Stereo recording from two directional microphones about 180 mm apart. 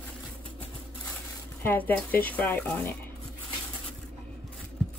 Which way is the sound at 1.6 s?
10° left (ahead or behind).